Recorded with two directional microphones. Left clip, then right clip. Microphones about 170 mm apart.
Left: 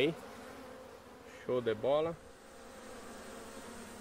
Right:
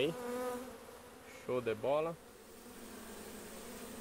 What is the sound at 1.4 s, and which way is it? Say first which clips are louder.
Speech: left 3 dB; 25° left (ahead or behind).